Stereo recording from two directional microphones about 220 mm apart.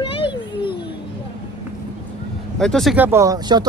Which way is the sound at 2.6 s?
Centre (ahead or behind).